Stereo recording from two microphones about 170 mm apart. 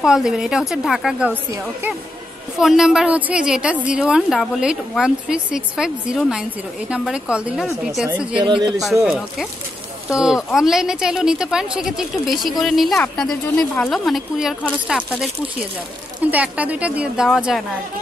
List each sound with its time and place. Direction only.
0.0 s a woman's voice: 5° right (ahead or behind)
2.6 s a woman's voice: centre (ahead or behind)
8.5 s speech: 25° right (ahead or behind)
8.8 s a woman's voice: centre (ahead or behind)